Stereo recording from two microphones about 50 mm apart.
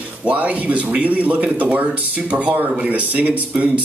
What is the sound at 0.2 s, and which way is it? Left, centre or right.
Speech, right.